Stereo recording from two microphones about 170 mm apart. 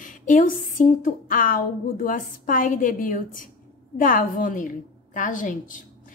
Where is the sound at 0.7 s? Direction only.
50° left (ahead or behind).